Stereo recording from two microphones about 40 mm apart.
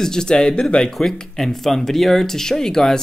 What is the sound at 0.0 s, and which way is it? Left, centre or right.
Speech, centre.